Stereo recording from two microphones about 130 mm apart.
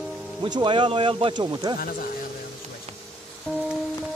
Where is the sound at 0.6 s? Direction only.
40° right (ahead or behind).